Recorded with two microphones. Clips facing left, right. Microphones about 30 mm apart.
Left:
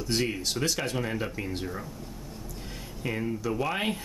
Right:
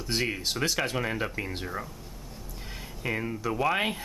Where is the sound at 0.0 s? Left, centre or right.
Centre.